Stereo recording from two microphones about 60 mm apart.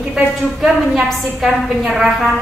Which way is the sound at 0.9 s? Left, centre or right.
Centre.